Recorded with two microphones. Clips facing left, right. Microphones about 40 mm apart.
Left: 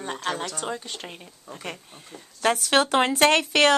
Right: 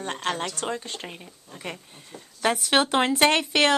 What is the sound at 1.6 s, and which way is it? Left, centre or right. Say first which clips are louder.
Speech: right 1 dB; centre.